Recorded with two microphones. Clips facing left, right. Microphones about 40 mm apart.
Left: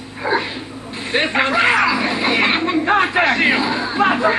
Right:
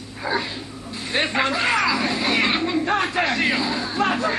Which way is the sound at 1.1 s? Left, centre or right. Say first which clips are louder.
Left 5 dB; left.